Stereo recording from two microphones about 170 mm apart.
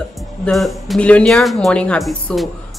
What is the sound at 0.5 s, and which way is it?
A woman's voice, centre (ahead or behind).